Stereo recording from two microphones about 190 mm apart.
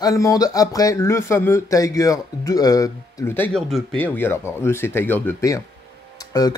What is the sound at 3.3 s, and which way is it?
Speech, 5° left (ahead or behind).